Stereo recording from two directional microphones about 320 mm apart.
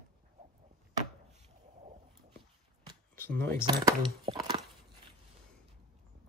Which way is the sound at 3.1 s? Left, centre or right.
Centre.